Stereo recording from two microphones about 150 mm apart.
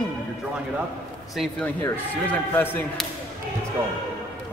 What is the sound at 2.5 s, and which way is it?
Speech, 15° left (ahead or behind).